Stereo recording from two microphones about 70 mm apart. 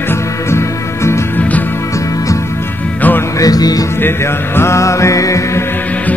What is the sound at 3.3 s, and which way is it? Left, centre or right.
Music, left.